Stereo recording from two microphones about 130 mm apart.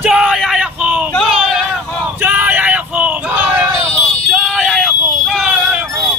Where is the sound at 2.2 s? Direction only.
15° right (ahead or behind).